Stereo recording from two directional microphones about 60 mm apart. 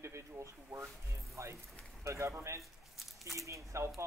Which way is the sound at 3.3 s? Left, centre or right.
Right.